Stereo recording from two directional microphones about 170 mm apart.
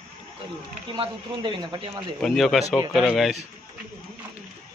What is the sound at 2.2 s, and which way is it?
A man's voice, centre (ahead or behind).